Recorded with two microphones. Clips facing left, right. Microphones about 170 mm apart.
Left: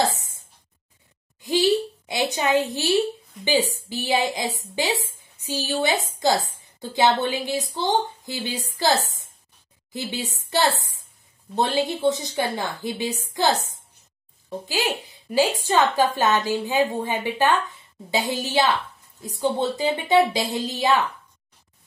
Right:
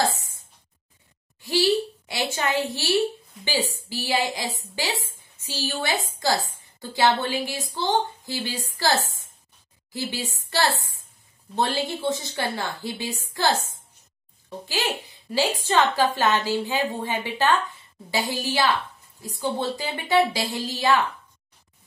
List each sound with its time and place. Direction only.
0.0 s a sound: 20° left (ahead or behind)
1.4 s a woman's voice: 20° left (ahead or behind)
3.9 s a woman's voice: 20° left (ahead or behind)
9.9 s a woman's voice: 20° left (ahead or behind)
14.7 s a child's voice: 15° left (ahead or behind)